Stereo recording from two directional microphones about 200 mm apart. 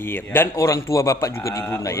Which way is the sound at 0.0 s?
10° left (ahead or behind).